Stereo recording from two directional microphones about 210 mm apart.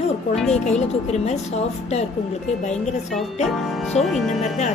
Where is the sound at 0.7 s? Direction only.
35° left (ahead or behind).